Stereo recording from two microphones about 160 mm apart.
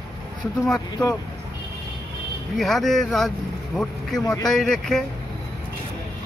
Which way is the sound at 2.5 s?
Centre (ahead or behind).